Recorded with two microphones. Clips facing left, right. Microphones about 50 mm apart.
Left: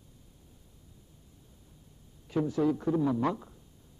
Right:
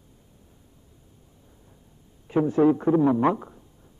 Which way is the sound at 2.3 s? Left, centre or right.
Right.